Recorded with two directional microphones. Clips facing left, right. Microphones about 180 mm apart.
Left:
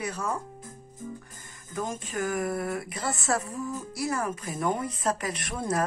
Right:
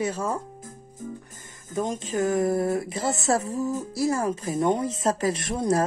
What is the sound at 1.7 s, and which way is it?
Speech, 20° right (ahead or behind).